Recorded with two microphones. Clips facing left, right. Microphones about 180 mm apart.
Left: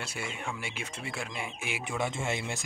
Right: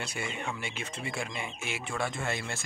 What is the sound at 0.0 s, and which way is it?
Speech, 5° left (ahead or behind).